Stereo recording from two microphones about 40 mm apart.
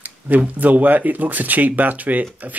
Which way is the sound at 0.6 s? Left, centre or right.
Right.